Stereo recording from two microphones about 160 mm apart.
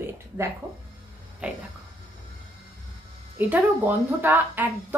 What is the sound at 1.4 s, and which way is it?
Speech, 5° right (ahead or behind).